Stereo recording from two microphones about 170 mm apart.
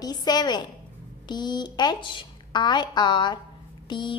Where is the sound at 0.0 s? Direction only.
25° left (ahead or behind).